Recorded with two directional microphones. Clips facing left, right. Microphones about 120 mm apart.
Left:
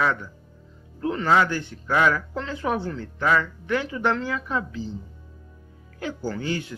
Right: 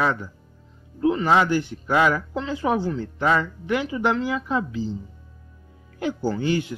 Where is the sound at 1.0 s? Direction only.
10° right (ahead or behind).